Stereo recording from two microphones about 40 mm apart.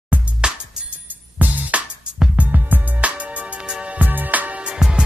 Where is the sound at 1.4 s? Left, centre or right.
Right.